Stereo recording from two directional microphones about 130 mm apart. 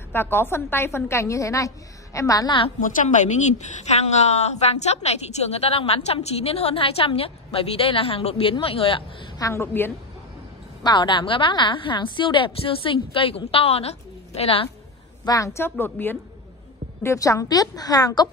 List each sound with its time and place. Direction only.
0.1 s a woman's voice: 15° left (ahead or behind)
2.8 s a woman's voice: 80° left; by 9.3 s 45° left (ahead or behind)
9.4 s a woman's voice: 20° left (ahead or behind)
10.8 s a woman's voice: 35° left (ahead or behind)
15.2 s a woman's voice: 25° left (ahead or behind)